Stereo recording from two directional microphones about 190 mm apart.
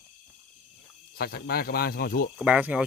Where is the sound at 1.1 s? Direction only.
55° left (ahead or behind).